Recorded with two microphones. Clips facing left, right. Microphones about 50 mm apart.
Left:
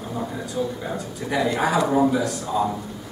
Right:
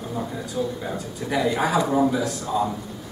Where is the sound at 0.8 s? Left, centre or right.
Centre.